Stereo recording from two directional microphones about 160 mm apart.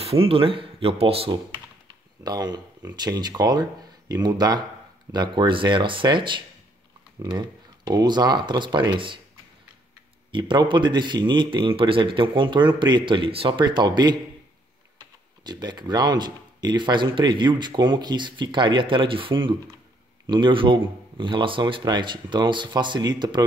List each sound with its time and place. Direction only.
0.0 s speech: 35° right (ahead or behind)
1.9 s computer keyboard: 25° right (ahead or behind)
3.0 s speech: 25° right (ahead or behind)
10.3 s speech: 30° right (ahead or behind)
15.4 s speech: 25° right (ahead or behind)